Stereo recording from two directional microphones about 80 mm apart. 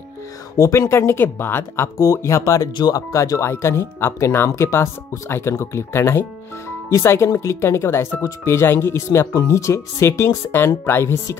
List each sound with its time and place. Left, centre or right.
0.6 s speech: left
2.0 s speech: left